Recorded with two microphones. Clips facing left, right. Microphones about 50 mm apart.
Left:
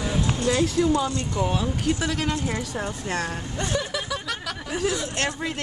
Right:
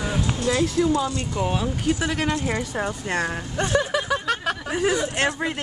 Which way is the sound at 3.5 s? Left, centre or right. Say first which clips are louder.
Right 6 dB; right.